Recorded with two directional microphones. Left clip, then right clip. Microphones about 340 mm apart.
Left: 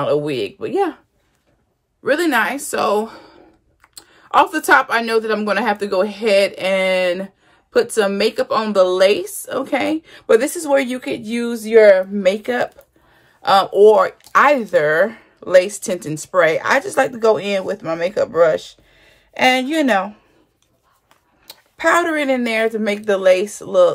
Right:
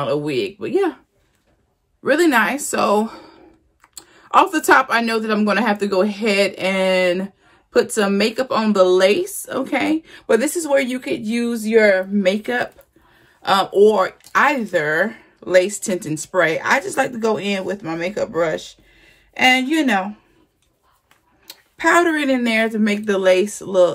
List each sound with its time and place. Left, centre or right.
0.0 s speech: centre
2.0 s a woman's voice: centre
21.5 s speech: centre